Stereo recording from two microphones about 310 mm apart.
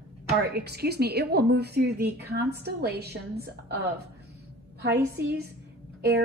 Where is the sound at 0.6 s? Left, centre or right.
Right.